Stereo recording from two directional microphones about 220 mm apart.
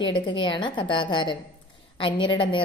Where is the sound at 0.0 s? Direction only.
20° left (ahead or behind).